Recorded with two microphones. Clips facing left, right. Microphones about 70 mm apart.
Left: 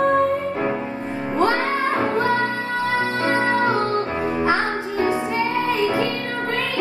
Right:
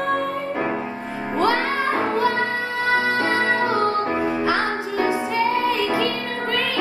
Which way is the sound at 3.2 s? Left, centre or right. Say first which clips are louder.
Left 1 dB; left.